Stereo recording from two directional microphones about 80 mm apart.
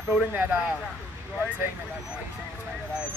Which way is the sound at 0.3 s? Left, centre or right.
Right.